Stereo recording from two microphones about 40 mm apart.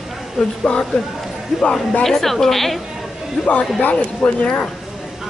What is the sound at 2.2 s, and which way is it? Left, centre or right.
A woman's voice, centre.